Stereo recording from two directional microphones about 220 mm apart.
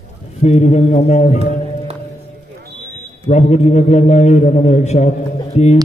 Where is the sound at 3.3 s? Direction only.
30° left (ahead or behind).